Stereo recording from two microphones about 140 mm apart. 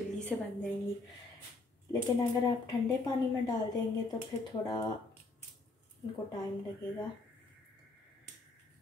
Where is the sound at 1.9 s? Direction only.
25° left (ahead or behind).